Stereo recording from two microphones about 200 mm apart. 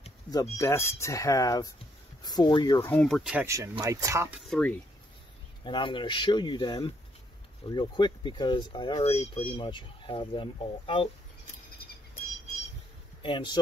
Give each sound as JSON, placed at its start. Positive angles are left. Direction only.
{"t": 0.3, "sound": "speech", "side_deg": 15}
{"t": 2.9, "sound": "speech", "side_deg": 5}
{"t": 3.3, "sound": "speech", "side_deg": -15}
{"t": 4.5, "sound": "speech", "side_deg": 5}
{"t": 5.6, "sound": "speech", "side_deg": 25}
{"t": 11.8, "sound": "a sound", "side_deg": 50}
{"t": 13.2, "sound": "speech", "side_deg": 25}